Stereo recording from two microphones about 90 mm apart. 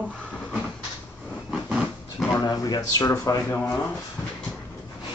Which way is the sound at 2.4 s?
45° left (ahead or behind).